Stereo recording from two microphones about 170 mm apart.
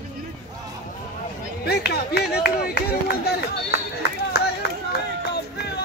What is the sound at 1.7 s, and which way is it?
Speech, 70° left (ahead or behind).